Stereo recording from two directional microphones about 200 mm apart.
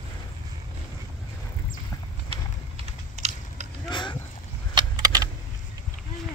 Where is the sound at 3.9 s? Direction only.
25° left (ahead or behind).